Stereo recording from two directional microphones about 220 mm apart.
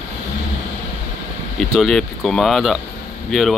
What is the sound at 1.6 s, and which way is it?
Speech, centre (ahead or behind).